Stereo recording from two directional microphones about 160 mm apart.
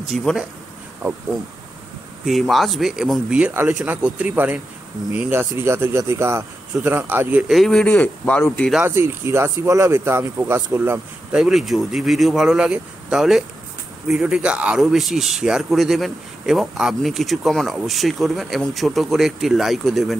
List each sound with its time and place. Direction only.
0.1 s speech: centre (ahead or behind)
2.2 s speech: centre (ahead or behind)
8.8 s speech: 15° right (ahead or behind)
11.3 s speech: 5° right (ahead or behind)